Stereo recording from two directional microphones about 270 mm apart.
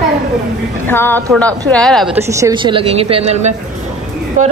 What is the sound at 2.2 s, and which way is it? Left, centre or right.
Speech, centre.